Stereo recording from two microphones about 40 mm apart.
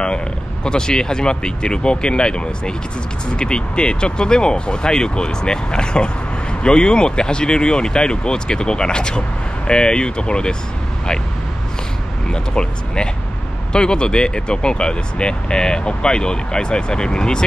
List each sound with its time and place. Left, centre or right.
0.7 s speech: centre
12.5 s speech: left